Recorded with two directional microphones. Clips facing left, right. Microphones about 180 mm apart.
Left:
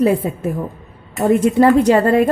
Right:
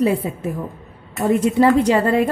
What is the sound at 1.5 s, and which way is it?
Speech, 50° left (ahead or behind).